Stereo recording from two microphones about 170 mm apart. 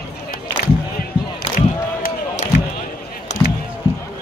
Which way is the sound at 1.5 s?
55° left (ahead or behind).